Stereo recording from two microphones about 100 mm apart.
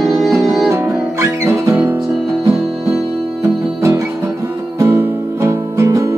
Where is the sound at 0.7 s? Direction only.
25° right (ahead or behind).